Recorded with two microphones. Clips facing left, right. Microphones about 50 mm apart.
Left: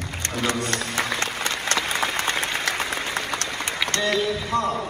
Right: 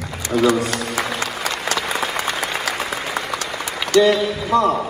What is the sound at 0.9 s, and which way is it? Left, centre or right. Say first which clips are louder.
Applause: right 2 dB; centre.